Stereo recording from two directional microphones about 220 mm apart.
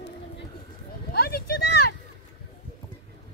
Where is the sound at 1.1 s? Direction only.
45° left (ahead or behind).